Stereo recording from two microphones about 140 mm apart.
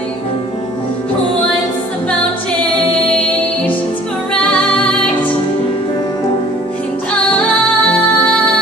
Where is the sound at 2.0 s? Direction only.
10° left (ahead or behind).